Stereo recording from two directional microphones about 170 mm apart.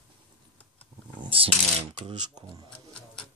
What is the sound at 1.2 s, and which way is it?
Mechanisms, 30° right (ahead or behind).